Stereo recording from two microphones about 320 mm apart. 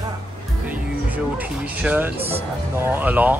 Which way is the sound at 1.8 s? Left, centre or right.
Centre.